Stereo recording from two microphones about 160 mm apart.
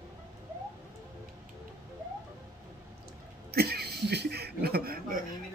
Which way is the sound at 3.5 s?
75° right (ahead or behind).